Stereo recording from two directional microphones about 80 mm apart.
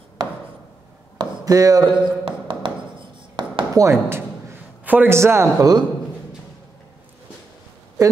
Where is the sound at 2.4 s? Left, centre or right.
Right.